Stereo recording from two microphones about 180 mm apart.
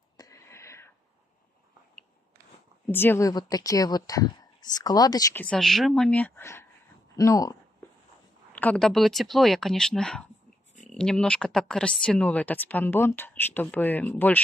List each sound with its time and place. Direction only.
0.2 s whispering: 15° left (ahead or behind)
2.9 s a woman's voice: 10° left (ahead or behind)
5.3 s a woman's voice: 5° left (ahead or behind)
8.5 s speech: 5° left (ahead or behind)